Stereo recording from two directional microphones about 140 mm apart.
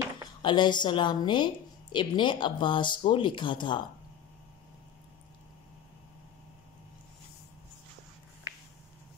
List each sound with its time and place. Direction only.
0.4 s a woman's voice: 35° left (ahead or behind)